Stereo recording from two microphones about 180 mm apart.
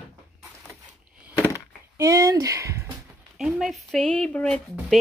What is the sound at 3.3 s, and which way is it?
Speech, centre (ahead or behind).